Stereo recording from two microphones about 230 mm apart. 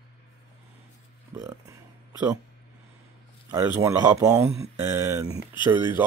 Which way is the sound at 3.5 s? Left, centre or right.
Centre.